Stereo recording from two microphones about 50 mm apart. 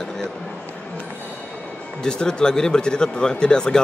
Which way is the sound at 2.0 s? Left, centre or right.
Centre.